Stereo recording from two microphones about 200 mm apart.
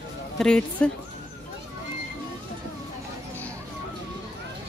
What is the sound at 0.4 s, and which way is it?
Speech, 5° left (ahead or behind).